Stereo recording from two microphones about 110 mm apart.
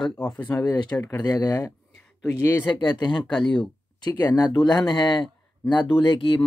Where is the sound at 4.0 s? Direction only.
35° left (ahead or behind).